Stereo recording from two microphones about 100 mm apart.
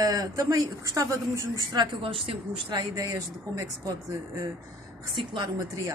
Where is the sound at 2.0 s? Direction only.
65° right (ahead or behind).